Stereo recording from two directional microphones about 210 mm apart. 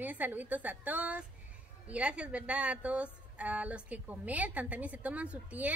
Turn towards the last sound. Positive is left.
turn(degrees=-5)  # may be behind; listen again after turning